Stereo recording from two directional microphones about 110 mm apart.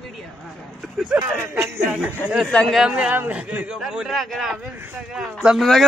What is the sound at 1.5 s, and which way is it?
Speech, 25° right (ahead or behind).